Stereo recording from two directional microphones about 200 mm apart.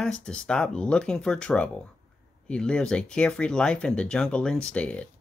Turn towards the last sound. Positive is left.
turn(degrees=5)  # may be behind; listen again after turning